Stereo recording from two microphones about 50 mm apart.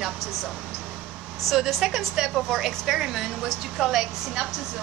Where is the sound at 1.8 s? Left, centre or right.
Centre.